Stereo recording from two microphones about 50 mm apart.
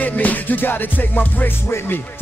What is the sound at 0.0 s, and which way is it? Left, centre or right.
Music, left.